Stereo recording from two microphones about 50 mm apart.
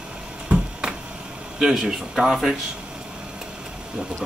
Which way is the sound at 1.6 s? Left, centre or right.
Centre.